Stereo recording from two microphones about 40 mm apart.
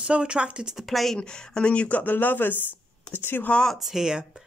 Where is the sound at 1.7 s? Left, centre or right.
Left.